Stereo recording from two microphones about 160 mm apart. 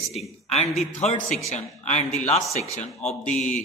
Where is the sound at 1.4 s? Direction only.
45° left (ahead or behind).